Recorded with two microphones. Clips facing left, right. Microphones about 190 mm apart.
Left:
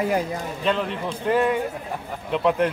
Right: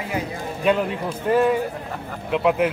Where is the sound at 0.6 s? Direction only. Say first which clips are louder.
Right 4 dB; 10° right (ahead or behind).